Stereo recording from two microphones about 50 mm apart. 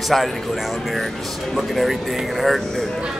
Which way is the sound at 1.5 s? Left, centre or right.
Centre.